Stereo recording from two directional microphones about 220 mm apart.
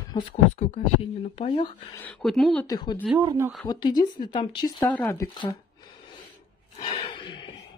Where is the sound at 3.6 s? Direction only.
20° left (ahead or behind).